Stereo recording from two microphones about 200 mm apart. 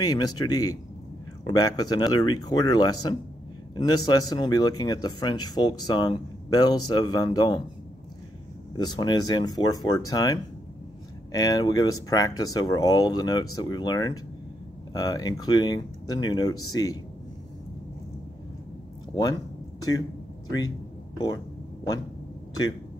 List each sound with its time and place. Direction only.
0.0 s speech: 20° left (ahead or behind)
8.7 s speech: 20° left (ahead or behind)
19.8 s speech: 20° left (ahead or behind)